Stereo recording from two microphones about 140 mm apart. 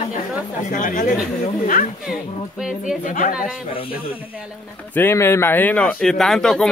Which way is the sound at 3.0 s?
75° left (ahead or behind).